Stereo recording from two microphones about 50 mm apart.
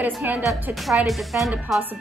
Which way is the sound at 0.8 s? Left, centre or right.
Centre.